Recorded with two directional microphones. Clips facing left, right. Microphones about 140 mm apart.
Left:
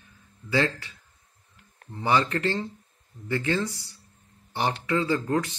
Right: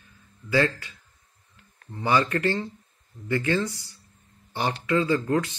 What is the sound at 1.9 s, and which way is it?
Speech, 20° left (ahead or behind).